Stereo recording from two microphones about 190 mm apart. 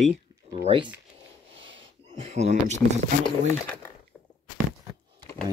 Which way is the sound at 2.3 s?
35° right (ahead or behind).